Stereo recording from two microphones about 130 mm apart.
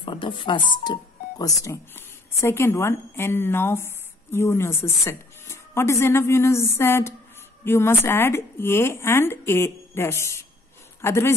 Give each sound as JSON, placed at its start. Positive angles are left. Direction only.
{"t": 0.0, "sound": "speech", "side_deg": 40}
{"t": 1.4, "sound": "a woman's voice", "side_deg": 25}